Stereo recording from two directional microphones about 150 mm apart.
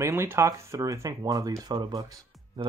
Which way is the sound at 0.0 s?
15° right (ahead or behind).